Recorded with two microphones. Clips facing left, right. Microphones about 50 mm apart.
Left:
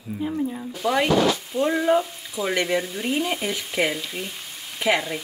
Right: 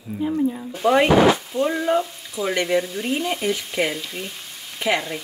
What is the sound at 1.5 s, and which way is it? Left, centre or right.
Speech, centre.